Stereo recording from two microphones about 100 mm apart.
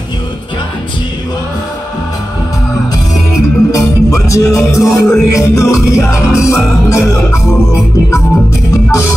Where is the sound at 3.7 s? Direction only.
30° left (ahead or behind).